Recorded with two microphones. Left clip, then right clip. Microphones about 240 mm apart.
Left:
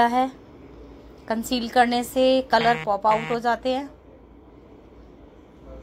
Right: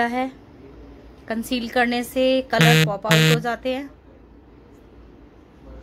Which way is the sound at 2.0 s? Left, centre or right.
Right.